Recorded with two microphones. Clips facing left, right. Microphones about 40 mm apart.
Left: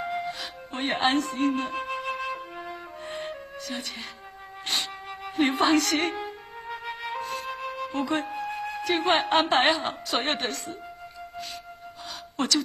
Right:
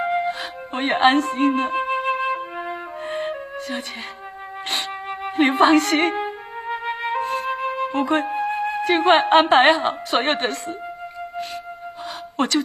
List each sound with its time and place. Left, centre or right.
0.0 s music: right
12.4 s speech: right